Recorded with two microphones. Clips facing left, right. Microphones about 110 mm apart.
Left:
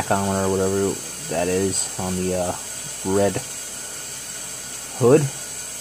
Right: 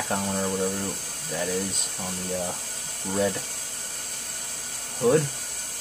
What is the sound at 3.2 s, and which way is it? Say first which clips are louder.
Speech: left 6 dB; 70° left (ahead or behind).